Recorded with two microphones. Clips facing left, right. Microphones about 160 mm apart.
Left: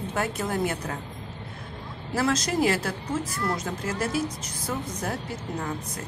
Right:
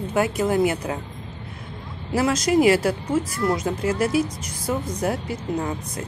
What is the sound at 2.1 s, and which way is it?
Speech, 15° right (ahead or behind).